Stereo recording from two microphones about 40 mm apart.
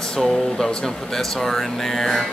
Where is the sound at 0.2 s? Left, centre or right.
Centre.